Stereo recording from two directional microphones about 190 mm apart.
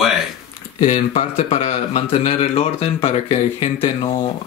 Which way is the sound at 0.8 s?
30° left (ahead or behind).